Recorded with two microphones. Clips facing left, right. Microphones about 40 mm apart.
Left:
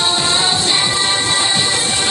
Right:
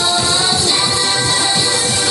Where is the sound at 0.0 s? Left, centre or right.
Left.